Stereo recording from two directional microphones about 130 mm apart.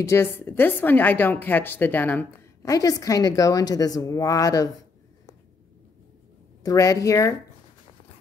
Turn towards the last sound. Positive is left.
turn(degrees=25)  # may be behind; listen again after turning